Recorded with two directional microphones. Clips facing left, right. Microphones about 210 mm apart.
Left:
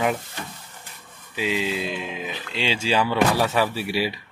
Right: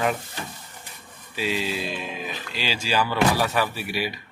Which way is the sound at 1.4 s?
20° left (ahead or behind).